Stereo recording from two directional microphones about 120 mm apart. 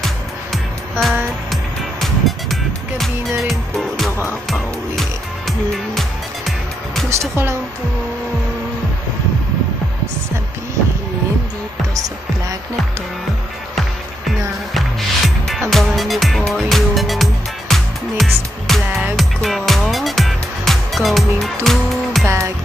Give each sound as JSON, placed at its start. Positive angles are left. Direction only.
{"t": 0.0, "sound": "music", "side_deg": 0}
{"t": 7.1, "sound": "music", "side_deg": -20}
{"t": 14.7, "sound": "music", "side_deg": 0}
{"t": 22.2, "sound": "music", "side_deg": -25}